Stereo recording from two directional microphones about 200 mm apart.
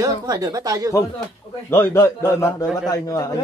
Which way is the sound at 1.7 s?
10° left (ahead or behind).